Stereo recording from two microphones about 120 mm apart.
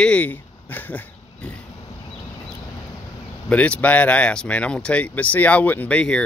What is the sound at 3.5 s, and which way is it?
Speech, 10° left (ahead or behind).